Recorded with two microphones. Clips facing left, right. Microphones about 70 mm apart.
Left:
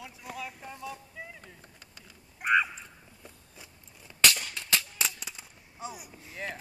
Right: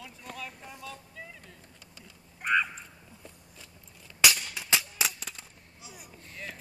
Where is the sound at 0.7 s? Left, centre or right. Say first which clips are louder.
Left 3 dB; centre.